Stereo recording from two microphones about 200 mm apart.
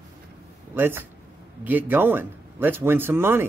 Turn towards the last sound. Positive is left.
turn(degrees=-10)  # may be behind; listen again after turning